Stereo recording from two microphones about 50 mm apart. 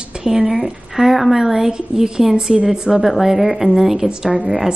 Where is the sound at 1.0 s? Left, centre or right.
Centre.